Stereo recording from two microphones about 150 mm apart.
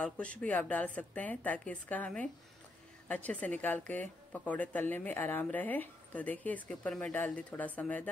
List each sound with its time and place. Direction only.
0.0 s a woman's voice: 10° left (ahead or behind)